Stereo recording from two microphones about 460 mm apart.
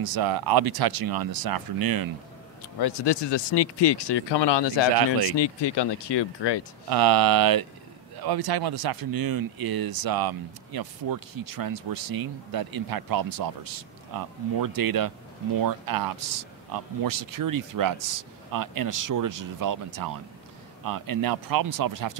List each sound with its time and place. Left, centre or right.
0.0 s speech: right
2.8 s speech: left
6.9 s speech: right